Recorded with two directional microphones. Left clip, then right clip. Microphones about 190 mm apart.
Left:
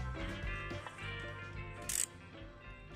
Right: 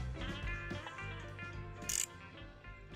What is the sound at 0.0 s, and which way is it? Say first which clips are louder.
Music: left 1 dB; centre (ahead or behind).